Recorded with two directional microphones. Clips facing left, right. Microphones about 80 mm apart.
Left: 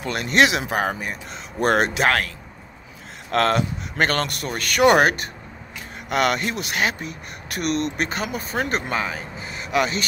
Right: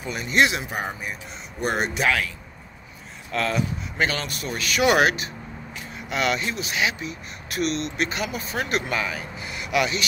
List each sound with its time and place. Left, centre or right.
0.0 s speech: left
1.6 s speech: left
2.0 s speech: left
3.3 s speech: left